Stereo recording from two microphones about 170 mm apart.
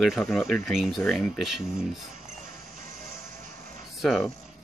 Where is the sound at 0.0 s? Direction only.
Centre (ahead or behind).